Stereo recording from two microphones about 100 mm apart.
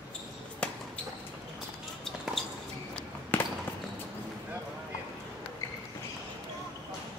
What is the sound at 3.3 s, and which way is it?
Basketball bounce, 15° left (ahead or behind).